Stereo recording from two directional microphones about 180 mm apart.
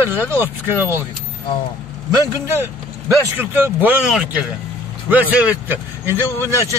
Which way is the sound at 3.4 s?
10° right (ahead or behind).